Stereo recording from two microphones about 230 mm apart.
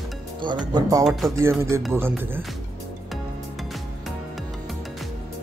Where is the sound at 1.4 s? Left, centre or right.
Centre.